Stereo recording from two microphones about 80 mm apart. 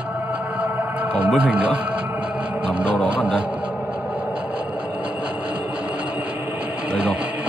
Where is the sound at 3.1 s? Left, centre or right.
Centre.